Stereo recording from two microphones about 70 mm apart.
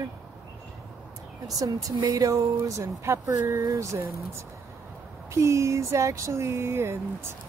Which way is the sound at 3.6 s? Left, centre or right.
Right.